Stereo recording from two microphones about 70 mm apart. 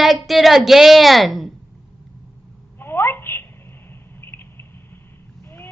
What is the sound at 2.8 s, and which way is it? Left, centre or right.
Telephone, left.